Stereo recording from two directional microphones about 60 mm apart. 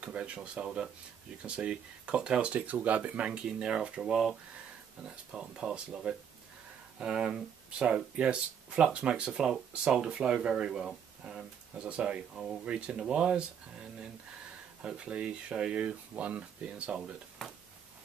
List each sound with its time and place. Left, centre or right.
0.0 s speech: centre
3.3 s speech: centre
17.4 s speech: centre